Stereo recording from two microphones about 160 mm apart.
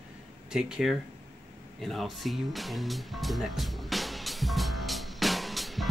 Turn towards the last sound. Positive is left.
turn(degrees=0)  # may be behind; listen again after turning